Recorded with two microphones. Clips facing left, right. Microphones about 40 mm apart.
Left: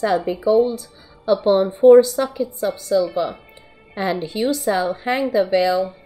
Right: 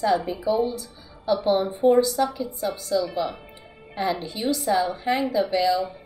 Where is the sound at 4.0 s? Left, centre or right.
Left.